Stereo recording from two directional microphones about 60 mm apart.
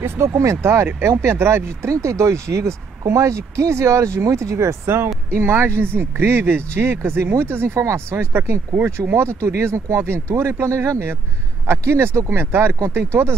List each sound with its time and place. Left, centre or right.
0.0 s speech: right